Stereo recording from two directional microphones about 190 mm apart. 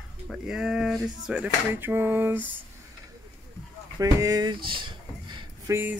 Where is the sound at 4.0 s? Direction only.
20° right (ahead or behind).